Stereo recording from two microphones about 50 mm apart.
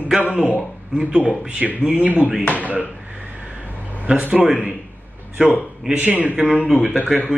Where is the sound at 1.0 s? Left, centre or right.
Centre.